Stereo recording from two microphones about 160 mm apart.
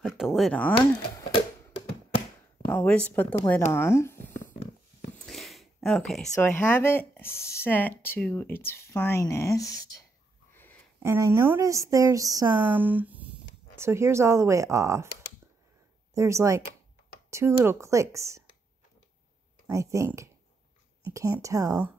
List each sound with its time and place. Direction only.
0.0 s speech: centre (ahead or behind)
2.7 s speech: 10° left (ahead or behind)
5.2 s a sound: centre (ahead or behind)
6.4 s speech: 15° left (ahead or behind)
10.5 s a sound: 15° left (ahead or behind)
11.0 s speech: 15° right (ahead or behind)
12.5 s speech: 10° right (ahead or behind)
16.2 s speech: 20° right (ahead or behind)
19.7 s speech: 20° right (ahead or behind)
21.1 s speech: 20° right (ahead or behind)